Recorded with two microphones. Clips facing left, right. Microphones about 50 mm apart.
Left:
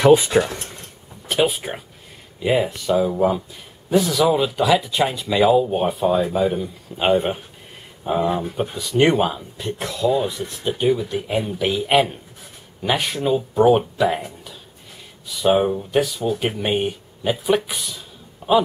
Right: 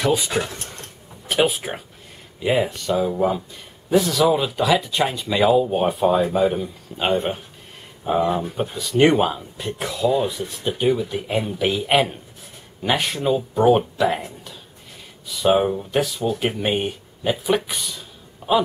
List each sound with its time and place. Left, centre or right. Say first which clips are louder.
0.3 s speech: left 6 dB; left
1.3 s speech: even; centre
7.0 s speech: left 3 dB; centre
15.2 s speech: even; centre